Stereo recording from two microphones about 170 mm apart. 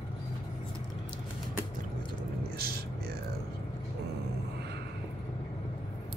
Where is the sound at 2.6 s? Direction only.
65° right (ahead or behind).